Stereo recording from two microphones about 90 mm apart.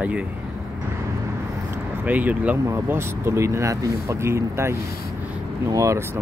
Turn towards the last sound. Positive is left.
turn(degrees=-35)  # may be behind; listen again after turning